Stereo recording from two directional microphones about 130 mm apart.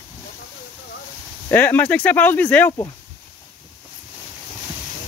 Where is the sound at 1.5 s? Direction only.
15° left (ahead or behind).